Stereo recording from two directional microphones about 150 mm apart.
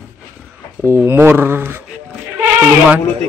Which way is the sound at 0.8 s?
15° right (ahead or behind).